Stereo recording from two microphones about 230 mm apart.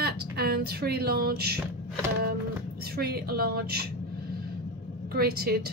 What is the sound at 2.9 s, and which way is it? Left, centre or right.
Speech, right.